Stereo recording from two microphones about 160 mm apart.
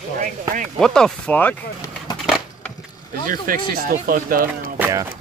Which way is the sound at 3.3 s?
60° right (ahead or behind).